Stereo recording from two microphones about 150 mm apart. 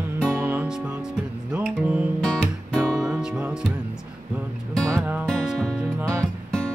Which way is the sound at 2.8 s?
20° right (ahead or behind).